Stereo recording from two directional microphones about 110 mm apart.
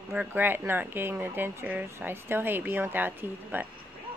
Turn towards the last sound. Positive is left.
turn(degrees=-15)  # may be behind; listen again after turning